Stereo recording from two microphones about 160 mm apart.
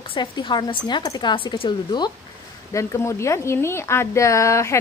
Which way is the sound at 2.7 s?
20° left (ahead or behind).